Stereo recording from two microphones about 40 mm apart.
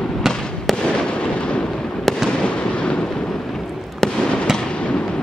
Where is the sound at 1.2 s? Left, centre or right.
Left.